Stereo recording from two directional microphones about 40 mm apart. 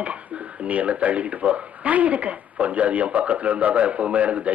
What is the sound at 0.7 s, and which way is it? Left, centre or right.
Speech, right.